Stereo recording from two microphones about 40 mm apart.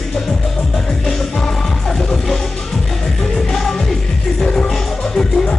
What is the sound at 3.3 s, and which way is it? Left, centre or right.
Music, centre.